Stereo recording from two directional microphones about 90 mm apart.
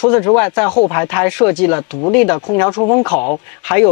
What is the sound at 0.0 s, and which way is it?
Speech, 20° left (ahead or behind).